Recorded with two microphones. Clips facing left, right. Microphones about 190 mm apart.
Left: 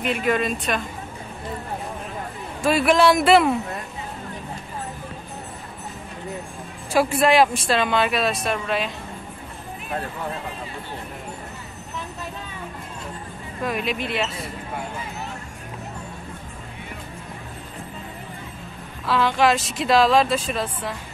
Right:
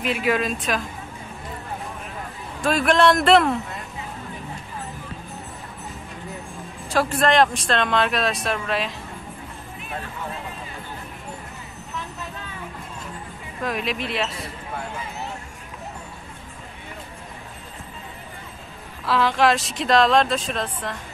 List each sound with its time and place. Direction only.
0.0 s speech: centre (ahead or behind)
2.6 s speech: 5° left (ahead or behind)
6.9 s speech: 10° left (ahead or behind)
13.6 s speech: centre (ahead or behind)
19.0 s speech: centre (ahead or behind)